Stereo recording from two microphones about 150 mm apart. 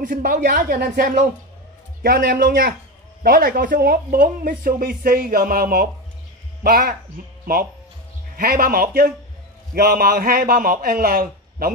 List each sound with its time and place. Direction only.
0.0 s speech: 65° right (ahead or behind)
2.0 s a man's voice: 85° right
8.4 s a man's voice: 80° right